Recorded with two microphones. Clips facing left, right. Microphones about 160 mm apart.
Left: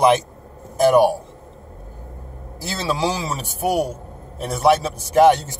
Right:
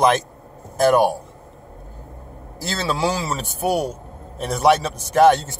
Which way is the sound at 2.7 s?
15° left (ahead or behind).